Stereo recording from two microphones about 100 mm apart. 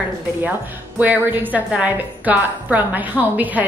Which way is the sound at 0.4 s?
15° right (ahead or behind).